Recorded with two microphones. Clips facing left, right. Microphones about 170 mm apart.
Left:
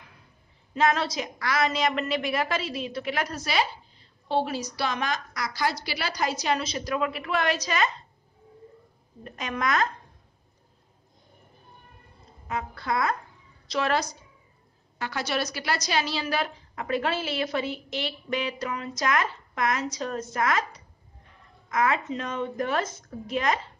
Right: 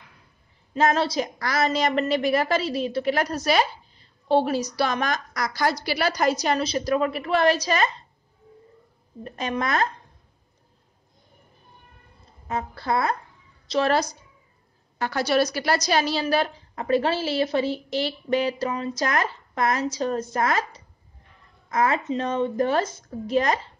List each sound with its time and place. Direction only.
0.7 s a woman's voice: 35° right (ahead or behind)
9.2 s a woman's voice: 35° right (ahead or behind)
12.4 s a woman's voice: 35° right (ahead or behind)